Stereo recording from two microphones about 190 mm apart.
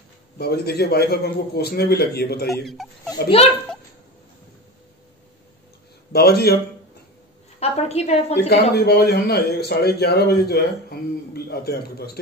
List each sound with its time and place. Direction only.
0.4 s a man's voice: 55° left (ahead or behind)
3.1 s a woman's voice: 30° left (ahead or behind)
6.1 s a man's voice: 55° left (ahead or behind)
7.6 s a woman's voice: 35° left (ahead or behind)
8.4 s a man's voice: 60° left (ahead or behind)